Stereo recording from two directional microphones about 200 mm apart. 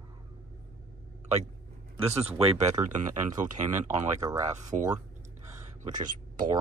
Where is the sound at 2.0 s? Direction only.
30° right (ahead or behind).